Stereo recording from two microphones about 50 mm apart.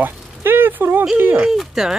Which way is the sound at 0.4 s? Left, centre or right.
Right.